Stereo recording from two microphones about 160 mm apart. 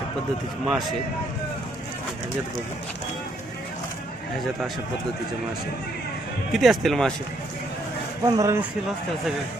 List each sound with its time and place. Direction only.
0.7 s speech: centre (ahead or behind)
6.5 s speech: centre (ahead or behind)
8.3 s a man's voice: 20° right (ahead or behind)